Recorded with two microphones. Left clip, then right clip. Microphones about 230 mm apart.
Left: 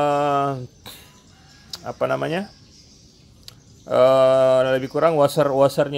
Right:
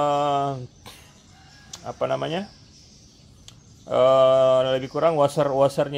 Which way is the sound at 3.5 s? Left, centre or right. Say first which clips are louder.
Left 3 dB; centre.